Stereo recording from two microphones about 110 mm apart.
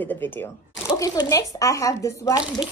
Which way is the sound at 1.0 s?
30° left (ahead or behind).